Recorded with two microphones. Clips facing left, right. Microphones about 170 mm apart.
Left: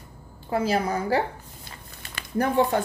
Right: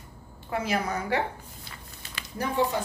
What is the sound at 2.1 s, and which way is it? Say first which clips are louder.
Speech: left 7 dB; 55° left (ahead or behind).